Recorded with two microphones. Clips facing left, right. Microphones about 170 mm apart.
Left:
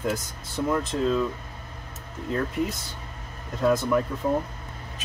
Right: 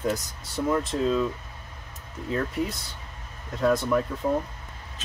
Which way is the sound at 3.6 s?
5° left (ahead or behind).